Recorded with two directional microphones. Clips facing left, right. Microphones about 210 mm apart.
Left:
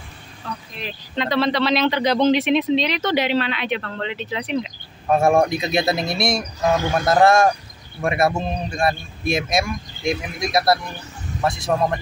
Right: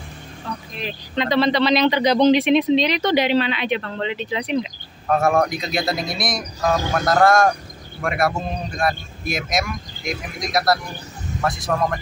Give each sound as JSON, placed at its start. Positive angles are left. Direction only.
{"t": 0.8, "sound": "speech", "side_deg": 0}
{"t": 5.5, "sound": "a man's voice", "side_deg": 25}